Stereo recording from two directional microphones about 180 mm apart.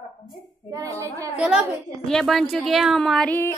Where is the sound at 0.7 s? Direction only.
15° right (ahead or behind).